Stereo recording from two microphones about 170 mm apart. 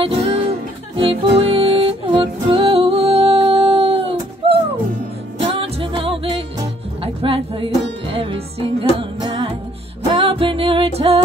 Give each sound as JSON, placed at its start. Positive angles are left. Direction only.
{"t": 0.0, "sound": "music", "side_deg": -35}